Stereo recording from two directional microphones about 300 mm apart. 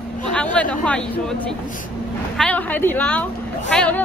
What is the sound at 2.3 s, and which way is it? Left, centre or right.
Speech, centre.